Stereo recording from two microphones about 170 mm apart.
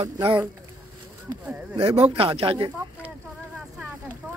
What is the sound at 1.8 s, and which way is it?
Speech, 35° right (ahead or behind).